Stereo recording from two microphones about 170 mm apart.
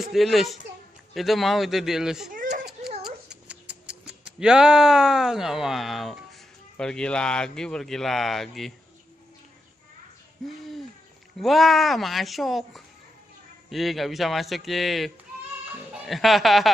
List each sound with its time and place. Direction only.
0.0 s speech: centre (ahead or behind)
2.3 s a sound: 55° right (ahead or behind)
3.0 s cat: 5° right (ahead or behind)
6.8 s speech: 5° left (ahead or behind)
11.3 s speech: centre (ahead or behind)